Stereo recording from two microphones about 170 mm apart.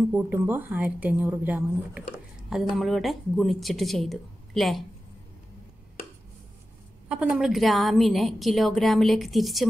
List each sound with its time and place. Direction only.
0.1 s a woman's voice: 10° right (ahead or behind)
7.1 s a woman's voice: 5° right (ahead or behind)